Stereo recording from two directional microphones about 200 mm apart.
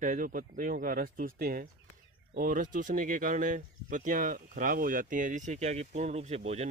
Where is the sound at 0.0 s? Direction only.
40° right (ahead or behind).